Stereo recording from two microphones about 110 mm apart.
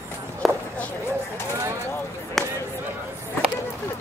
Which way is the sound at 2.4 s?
5° left (ahead or behind).